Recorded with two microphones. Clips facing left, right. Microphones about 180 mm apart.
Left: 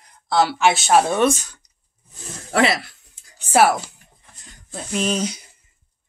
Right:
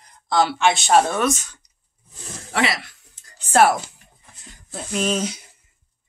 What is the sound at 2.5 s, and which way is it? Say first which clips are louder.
Speech: left 4 dB; 35° left (ahead or behind).